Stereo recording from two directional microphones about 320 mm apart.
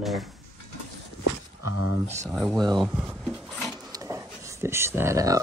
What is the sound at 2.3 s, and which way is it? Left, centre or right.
Speech, centre.